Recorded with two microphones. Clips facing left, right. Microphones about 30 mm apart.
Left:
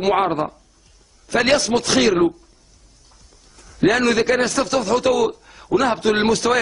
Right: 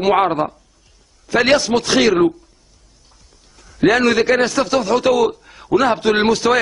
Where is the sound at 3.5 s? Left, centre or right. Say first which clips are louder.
Right 3 dB; centre.